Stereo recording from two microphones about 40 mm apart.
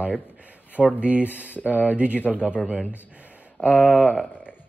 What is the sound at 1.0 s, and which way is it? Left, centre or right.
Speech, right.